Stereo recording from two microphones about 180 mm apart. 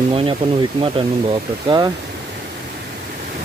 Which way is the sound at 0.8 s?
25° right (ahead or behind).